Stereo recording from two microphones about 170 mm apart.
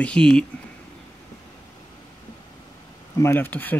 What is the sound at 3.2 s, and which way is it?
Speech, 10° left (ahead or behind).